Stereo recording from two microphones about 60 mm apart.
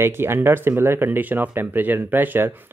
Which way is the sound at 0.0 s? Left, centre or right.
Right.